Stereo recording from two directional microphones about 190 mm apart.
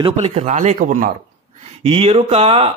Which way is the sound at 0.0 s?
30° right (ahead or behind).